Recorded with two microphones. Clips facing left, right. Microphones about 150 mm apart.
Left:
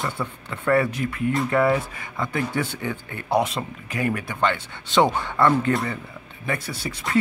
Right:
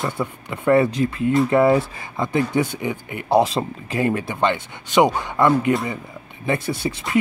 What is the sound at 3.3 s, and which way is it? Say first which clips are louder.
Speech: right 5 dB; 30° right (ahead or behind).